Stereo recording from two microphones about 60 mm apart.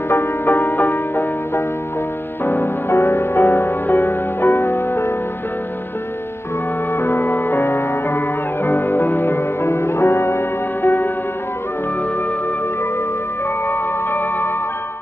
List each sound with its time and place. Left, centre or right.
0.1 s music: left
7.0 s music: left
13.7 s music: left